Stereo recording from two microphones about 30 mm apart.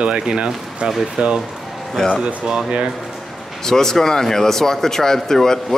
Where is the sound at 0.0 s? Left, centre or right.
Right.